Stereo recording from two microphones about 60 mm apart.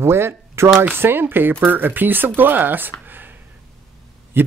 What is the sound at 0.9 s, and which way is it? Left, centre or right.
Speech, right.